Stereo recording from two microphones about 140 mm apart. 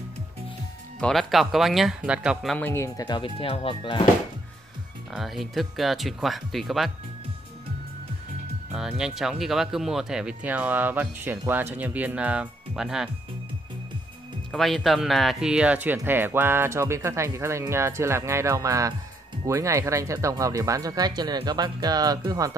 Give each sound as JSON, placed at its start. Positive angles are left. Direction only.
{"t": 1.0, "sound": "speech", "side_deg": 0}
{"t": 2.5, "sound": "speech", "side_deg": 15}
{"t": 3.1, "sound": "speech", "side_deg": 40}
{"t": 5.1, "sound": "speech", "side_deg": 0}
{"t": 8.7, "sound": "speech", "side_deg": -5}
{"t": 14.5, "sound": "speech", "side_deg": 0}